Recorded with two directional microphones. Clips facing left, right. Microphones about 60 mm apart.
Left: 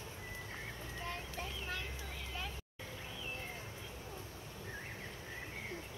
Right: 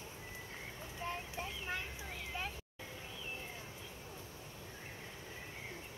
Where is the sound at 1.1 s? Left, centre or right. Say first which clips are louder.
Right 3 dB; right.